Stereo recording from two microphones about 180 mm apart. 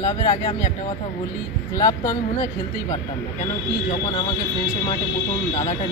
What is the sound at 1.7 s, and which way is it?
Speech, 20° left (ahead or behind).